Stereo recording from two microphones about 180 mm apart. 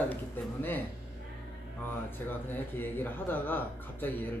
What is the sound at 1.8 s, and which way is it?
A man's voice, 10° left (ahead or behind).